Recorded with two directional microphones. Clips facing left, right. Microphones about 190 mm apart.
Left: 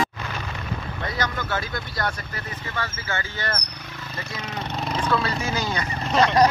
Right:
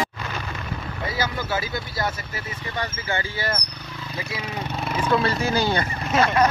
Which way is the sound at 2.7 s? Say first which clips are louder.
Right 3 dB; 15° right (ahead or behind).